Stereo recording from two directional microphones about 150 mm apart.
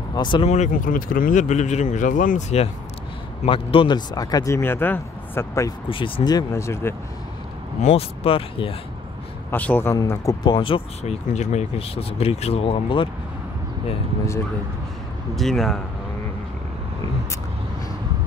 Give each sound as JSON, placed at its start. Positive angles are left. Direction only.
{"t": 0.1, "sound": "speech", "side_deg": 30}
{"t": 0.5, "sound": "speech", "side_deg": 55}
{"t": 3.4, "sound": "speech", "side_deg": 35}
{"t": 5.9, "sound": "speech", "side_deg": 35}
{"t": 7.8, "sound": "speech", "side_deg": 40}
{"t": 9.5, "sound": "speech", "side_deg": 10}
{"t": 9.9, "sound": "speech", "side_deg": 25}
{"t": 15.3, "sound": "speech", "side_deg": 0}